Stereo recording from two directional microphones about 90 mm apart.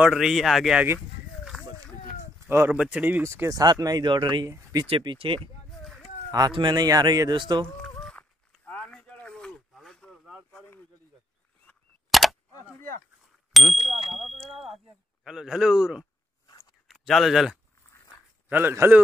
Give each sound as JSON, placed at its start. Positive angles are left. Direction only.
{"t": 0.0, "sound": "speech", "side_deg": -5}
{"t": 0.9, "sound": "a sound", "side_deg": -5}
{"t": 2.4, "sound": "speech", "side_deg": -30}
{"t": 2.7, "sound": "speech", "side_deg": -15}
{"t": 3.3, "sound": "speech", "side_deg": -35}
{"t": 4.8, "sound": "speech", "side_deg": -80}
{"t": 6.5, "sound": "speech", "side_deg": -55}
{"t": 8.0, "sound": "a sound", "side_deg": 10}
{"t": 12.1, "sound": "a sound", "side_deg": 0}
{"t": 13.5, "sound": "a sound", "side_deg": 0}
{"t": 14.1, "sound": "speech", "side_deg": 0}
{"t": 18.5, "sound": "a man's voice", "side_deg": -25}